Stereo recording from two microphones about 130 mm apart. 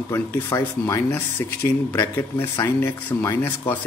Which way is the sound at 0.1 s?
20° left (ahead or behind).